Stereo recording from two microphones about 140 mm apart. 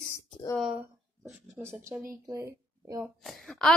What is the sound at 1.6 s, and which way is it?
Speech, 20° right (ahead or behind).